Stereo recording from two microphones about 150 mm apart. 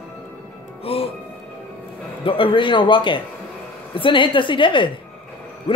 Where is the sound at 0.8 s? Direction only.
40° left (ahead or behind).